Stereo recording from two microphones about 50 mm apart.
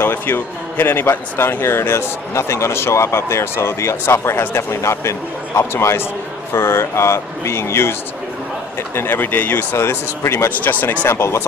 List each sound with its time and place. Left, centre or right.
0.0 s a man's voice: left
5.7 s speech: left
8.9 s speech: left
9.8 s speech: left
10.6 s speech: left
11.1 s speech: left